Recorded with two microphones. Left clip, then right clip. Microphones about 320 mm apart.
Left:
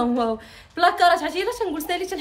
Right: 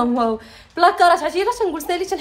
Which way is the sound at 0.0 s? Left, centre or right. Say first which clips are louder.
Right 4 dB; centre.